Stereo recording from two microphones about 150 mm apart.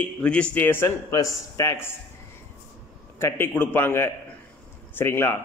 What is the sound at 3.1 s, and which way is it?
Speech, 15° left (ahead or behind).